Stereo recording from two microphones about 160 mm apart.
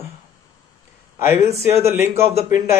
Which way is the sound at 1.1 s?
15° right (ahead or behind).